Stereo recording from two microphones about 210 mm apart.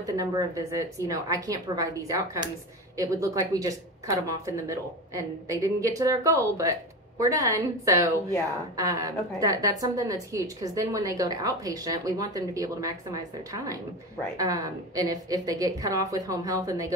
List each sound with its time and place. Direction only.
0.0 s a woman's voice: 15° right (ahead or behind)